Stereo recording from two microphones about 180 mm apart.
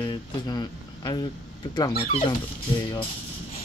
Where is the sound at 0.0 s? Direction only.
25° left (ahead or behind).